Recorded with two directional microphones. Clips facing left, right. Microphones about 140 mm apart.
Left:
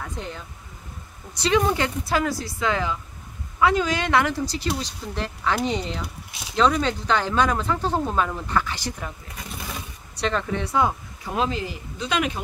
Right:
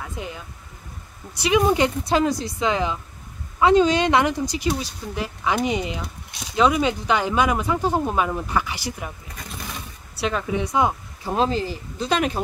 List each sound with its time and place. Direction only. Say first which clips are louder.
0.0 s a sound: right 1 dB; 10° right (ahead or behind)
1.3 s speech: right 2 dB; 10° right (ahead or behind)
10.1 s speech: right 1 dB; 5° right (ahead or behind)
11.2 s speech: right 4 dB; 35° right (ahead or behind)